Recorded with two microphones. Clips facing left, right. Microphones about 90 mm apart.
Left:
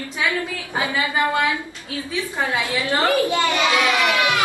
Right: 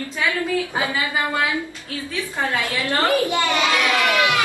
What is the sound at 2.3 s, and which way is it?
A child's voice, 15° left (ahead or behind).